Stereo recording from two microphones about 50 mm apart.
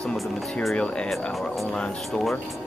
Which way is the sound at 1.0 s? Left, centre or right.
Centre.